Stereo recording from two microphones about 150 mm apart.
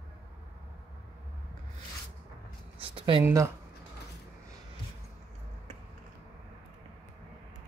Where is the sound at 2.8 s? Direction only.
35° right (ahead or behind).